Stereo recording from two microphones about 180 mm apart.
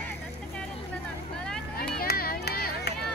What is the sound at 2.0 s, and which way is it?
Run, 55° left (ahead or behind).